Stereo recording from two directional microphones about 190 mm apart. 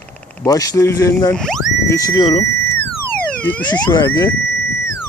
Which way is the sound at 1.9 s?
20° left (ahead or behind).